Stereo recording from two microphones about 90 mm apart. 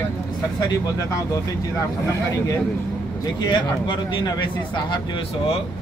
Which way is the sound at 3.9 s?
60° left (ahead or behind).